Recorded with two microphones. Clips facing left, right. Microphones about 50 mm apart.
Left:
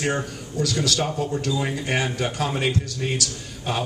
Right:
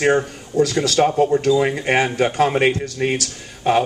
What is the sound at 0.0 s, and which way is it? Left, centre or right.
Speech, right.